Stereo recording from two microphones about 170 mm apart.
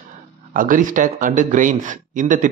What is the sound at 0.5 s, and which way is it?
Speech, 55° right (ahead or behind).